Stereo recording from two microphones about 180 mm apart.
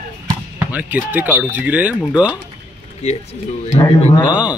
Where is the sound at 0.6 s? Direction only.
10° right (ahead or behind).